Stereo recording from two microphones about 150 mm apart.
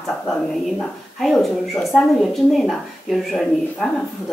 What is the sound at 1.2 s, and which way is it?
A woman's voice, centre (ahead or behind).